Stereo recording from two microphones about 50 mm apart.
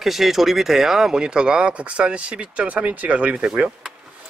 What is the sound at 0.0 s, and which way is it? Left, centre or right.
Speech, centre.